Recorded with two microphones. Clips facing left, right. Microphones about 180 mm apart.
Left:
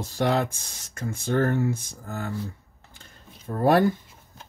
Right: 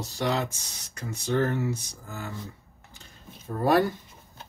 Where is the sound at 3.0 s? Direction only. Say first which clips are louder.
Right 1 dB; 50° left (ahead or behind).